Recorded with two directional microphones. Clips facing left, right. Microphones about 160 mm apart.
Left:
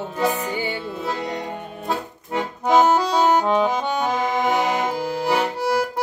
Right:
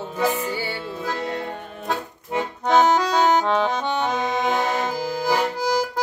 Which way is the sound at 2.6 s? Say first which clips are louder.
Left 1 dB; 10° left (ahead or behind).